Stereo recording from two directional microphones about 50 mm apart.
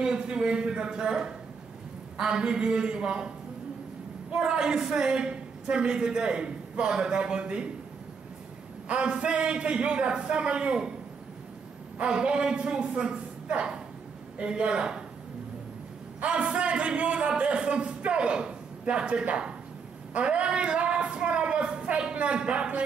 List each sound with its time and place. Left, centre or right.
0.0 s a woman's voice: centre
4.3 s a woman's voice: centre
8.8 s speech: right
12.0 s a woman's voice: centre
16.2 s speech: right